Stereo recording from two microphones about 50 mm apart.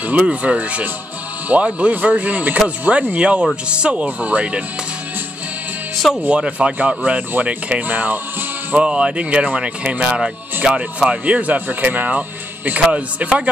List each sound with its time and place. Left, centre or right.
0.0 s speech: right
6.2 s speech: right
7.8 s speech: right
8.7 s speech: right
11.2 s speech: right